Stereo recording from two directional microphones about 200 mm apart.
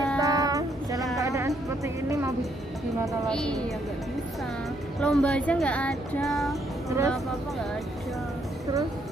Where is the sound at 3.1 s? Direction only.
5° left (ahead or behind).